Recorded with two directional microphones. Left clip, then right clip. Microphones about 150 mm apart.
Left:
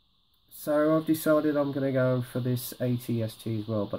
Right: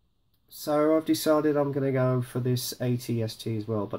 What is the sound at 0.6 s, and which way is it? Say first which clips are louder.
Speech: right 1 dB; 30° left (ahead or behind).